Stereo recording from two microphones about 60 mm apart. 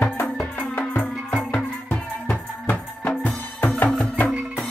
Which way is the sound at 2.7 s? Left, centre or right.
Centre.